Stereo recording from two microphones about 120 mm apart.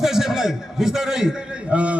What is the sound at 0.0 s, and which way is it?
A man's voice, 5° right (ahead or behind).